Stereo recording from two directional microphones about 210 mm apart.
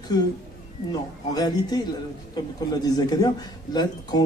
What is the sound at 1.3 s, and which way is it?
A man's voice, 20° left (ahead or behind).